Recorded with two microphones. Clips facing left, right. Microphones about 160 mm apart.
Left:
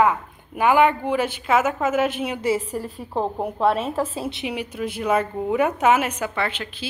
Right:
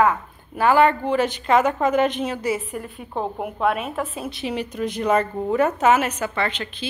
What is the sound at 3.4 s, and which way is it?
A woman's voice, 30° left (ahead or behind).